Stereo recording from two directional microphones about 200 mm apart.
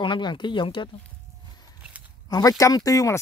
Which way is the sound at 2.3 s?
20° left (ahead or behind).